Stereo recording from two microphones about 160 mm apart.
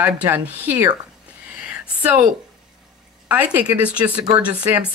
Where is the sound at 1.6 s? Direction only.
10° right (ahead or behind).